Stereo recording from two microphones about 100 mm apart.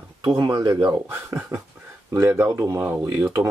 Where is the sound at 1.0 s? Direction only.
20° right (ahead or behind).